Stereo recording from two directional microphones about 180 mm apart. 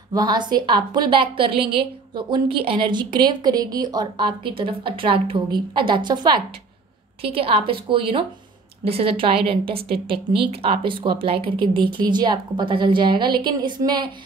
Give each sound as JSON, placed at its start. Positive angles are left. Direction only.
{"t": 0.1, "sound": "a woman's voice", "side_deg": -25}